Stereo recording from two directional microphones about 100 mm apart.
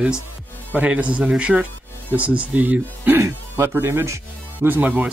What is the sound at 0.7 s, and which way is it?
Speech, 15° right (ahead or behind).